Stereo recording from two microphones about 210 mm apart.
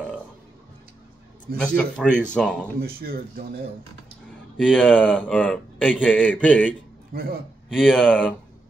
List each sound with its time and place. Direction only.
1.6 s speech: 5° left (ahead or behind)
2.8 s speech: 45° right (ahead or behind)
4.6 s speech: 5° left (ahead or behind)
7.1 s speech: 45° right (ahead or behind)
7.7 s speech: centre (ahead or behind)